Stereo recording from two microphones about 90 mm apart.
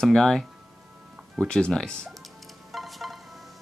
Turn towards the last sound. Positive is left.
turn(degrees=0)  # may be behind; listen again after turning